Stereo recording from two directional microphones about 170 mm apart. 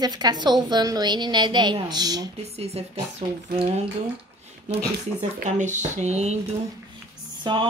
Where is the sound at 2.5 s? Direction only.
40° right (ahead or behind).